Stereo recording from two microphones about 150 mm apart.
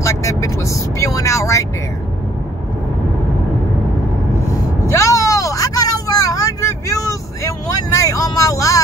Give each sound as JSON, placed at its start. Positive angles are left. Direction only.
{"t": 0.0, "sound": "vehicle", "side_deg": 20}
{"t": 4.8, "sound": "vehicle", "side_deg": 20}